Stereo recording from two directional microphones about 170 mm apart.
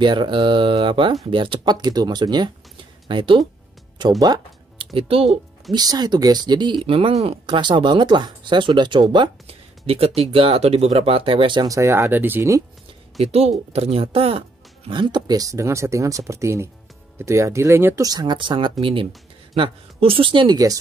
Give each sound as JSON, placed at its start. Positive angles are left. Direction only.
{"t": 0.0, "sound": "speech", "side_deg": -25}
{"t": 13.2, "sound": "speech", "side_deg": -35}